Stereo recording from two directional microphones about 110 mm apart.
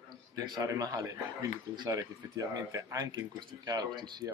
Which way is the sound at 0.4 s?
35° right (ahead or behind).